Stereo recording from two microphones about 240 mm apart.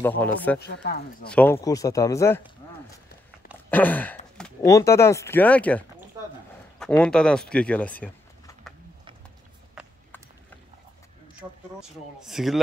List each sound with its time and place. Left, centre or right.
0.2 s speech: centre
0.6 s speech: left
1.3 s speech: centre
3.7 s speech: centre
7.0 s speech: centre
12.2 s speech: centre